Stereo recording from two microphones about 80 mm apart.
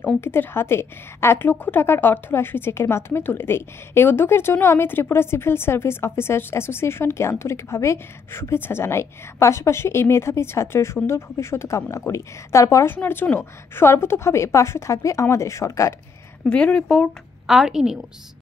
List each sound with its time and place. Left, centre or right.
0.2 s a woman's voice: left
12.9 s a woman's voice: left
16.4 s speech: centre
17.5 s a woman's voice: centre